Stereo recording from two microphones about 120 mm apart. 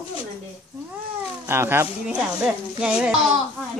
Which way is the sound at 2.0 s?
10° right (ahead or behind).